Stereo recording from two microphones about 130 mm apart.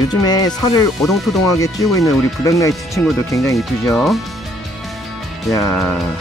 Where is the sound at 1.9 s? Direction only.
25° left (ahead or behind).